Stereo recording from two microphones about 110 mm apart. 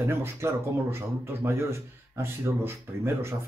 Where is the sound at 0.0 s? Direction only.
25° right (ahead or behind).